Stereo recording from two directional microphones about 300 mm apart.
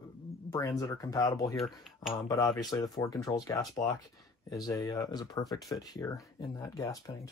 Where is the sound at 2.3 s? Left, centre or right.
Centre.